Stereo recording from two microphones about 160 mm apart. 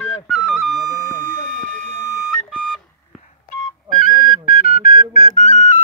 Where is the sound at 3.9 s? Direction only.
60° left (ahead or behind); by 5.8 s 45° left (ahead or behind).